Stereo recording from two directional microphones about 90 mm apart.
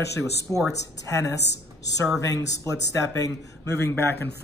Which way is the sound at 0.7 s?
40° left (ahead or behind).